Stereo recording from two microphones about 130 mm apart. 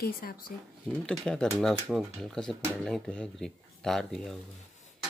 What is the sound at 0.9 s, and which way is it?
Speech, 5° left (ahead or behind).